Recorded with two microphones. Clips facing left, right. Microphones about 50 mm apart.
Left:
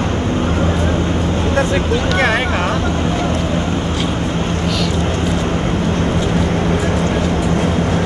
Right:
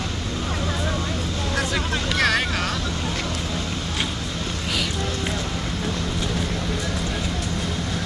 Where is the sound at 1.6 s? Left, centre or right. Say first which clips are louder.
Left 8 dB; left.